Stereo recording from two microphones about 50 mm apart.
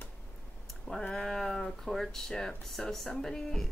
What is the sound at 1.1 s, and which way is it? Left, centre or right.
Speech, centre.